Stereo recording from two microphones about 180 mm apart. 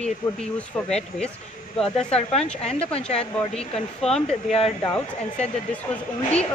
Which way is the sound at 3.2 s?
5° left (ahead or behind).